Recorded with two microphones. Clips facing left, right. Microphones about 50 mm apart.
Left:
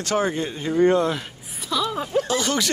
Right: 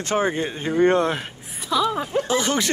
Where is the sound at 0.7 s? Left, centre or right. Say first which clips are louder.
Even; right.